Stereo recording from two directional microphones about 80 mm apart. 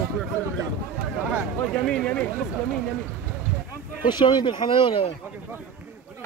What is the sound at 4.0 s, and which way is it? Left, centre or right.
Speech, left.